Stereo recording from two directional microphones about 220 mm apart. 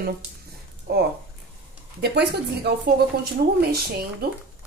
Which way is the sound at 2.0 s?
45° right (ahead or behind).